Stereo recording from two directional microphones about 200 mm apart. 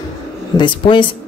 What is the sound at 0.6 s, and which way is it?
Speech, 25° left (ahead or behind).